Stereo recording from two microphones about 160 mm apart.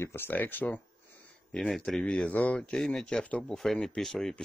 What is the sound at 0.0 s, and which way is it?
Speech, 15° left (ahead or behind).